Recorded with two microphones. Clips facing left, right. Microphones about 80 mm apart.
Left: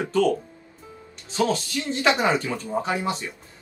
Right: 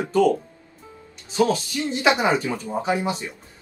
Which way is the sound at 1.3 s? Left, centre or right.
Centre.